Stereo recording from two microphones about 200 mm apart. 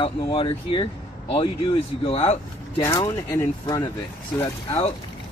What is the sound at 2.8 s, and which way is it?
Speech, 15° left (ahead or behind).